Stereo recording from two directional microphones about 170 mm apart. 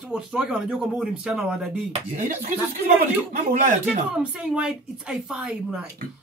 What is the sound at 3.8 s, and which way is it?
Speech, 10° right (ahead or behind).